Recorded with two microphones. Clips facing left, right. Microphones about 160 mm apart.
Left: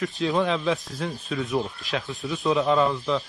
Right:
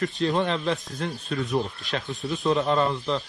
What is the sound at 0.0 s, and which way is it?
Speech, centre (ahead or behind).